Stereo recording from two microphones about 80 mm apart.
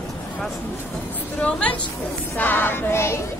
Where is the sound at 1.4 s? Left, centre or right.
Centre.